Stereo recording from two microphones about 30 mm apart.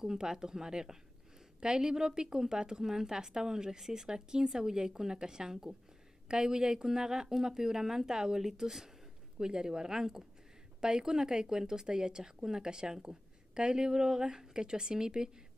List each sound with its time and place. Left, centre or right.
0.0 s speech: right
8.5 s speech: centre